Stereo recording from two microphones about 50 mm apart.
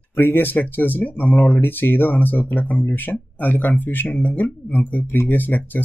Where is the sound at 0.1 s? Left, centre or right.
Left.